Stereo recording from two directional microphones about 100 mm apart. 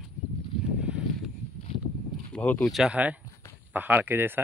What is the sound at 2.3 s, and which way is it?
Speech, 15° left (ahead or behind).